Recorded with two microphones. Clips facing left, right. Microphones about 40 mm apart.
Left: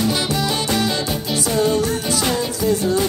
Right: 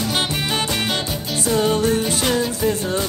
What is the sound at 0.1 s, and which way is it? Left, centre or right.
Music, right.